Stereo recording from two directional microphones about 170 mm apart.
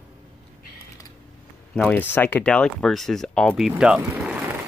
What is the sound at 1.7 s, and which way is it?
Speech, 5° left (ahead or behind).